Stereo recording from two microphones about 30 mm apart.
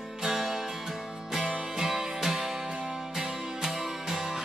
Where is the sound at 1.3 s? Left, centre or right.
Centre.